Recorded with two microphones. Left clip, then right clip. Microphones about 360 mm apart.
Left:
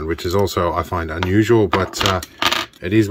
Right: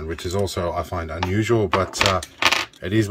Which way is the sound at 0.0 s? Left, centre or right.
Centre.